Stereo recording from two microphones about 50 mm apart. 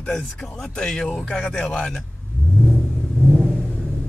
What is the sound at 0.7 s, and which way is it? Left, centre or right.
Speech, centre.